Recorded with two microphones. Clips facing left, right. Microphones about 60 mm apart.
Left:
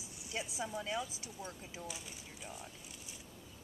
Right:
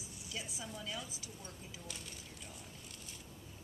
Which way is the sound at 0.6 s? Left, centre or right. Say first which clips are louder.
Left 9 dB; left.